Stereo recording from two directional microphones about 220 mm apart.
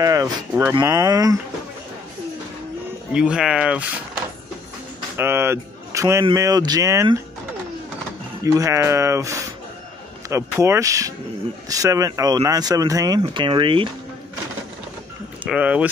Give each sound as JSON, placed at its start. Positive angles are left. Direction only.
{"t": 0.0, "sound": "speech", "side_deg": -15}
{"t": 3.1, "sound": "speech", "side_deg": -5}
{"t": 5.1, "sound": "speech", "side_deg": -10}
{"t": 8.5, "sound": "speech", "side_deg": -15}
{"t": 15.4, "sound": "speech", "side_deg": -5}